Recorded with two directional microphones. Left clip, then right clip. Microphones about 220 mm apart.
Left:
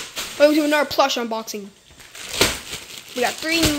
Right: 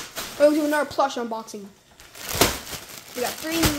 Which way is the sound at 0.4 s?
15° left (ahead or behind).